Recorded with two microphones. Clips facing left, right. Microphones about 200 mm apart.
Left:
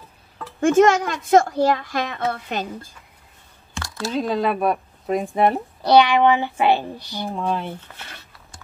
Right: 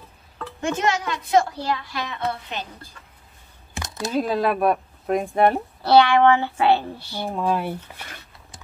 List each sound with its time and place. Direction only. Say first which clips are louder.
0.6 s a woman's voice: left 9 dB; 50° left (ahead or behind)
4.0 s speech: even; 5° right (ahead or behind)
5.8 s speech: left 1 dB; 20° left (ahead or behind)
7.3 s speech: right 2 dB; 5° right (ahead or behind)